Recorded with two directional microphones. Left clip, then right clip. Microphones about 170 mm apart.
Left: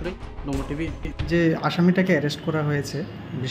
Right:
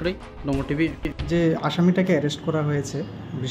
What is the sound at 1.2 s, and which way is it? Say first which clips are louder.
Speech: left 1 dB; 5° right (ahead or behind).